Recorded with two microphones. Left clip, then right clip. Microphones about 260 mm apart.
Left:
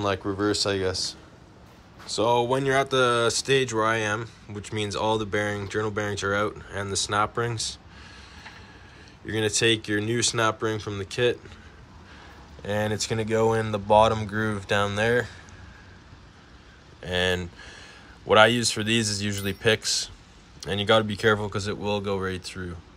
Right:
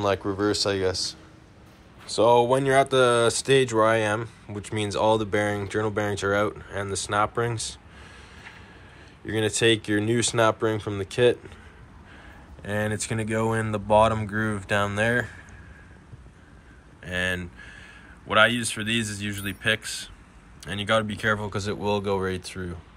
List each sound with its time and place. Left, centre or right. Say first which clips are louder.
0.0 s speech: right 2 dB; centre
2.1 s speech: right 4 dB; centre
9.2 s speech: right 1 dB; centre
12.6 s speech: left 1 dB; centre
17.0 s a man's voice: left 2 dB; left; by 22.8 s centre